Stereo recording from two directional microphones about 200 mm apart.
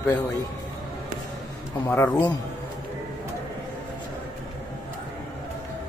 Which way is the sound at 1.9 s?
15° left (ahead or behind).